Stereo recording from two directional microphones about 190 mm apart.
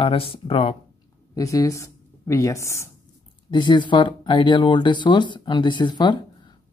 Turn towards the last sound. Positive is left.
turn(degrees=25)  # may be behind; listen again after turning